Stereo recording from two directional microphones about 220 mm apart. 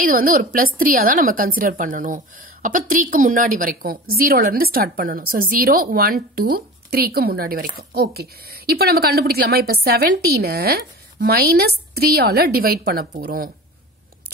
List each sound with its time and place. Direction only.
0.0 s a woman's voice: 40° right (ahead or behind)